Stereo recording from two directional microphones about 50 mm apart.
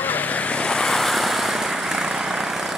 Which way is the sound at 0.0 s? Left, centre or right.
Left.